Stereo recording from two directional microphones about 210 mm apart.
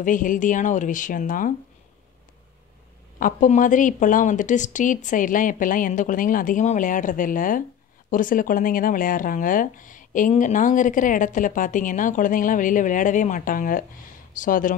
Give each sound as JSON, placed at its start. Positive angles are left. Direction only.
{"t": 0.0, "sound": "speech", "side_deg": 40}
{"t": 3.2, "sound": "speech", "side_deg": 40}